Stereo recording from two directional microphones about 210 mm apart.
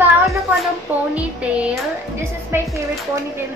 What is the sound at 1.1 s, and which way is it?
Music, 5° right (ahead or behind).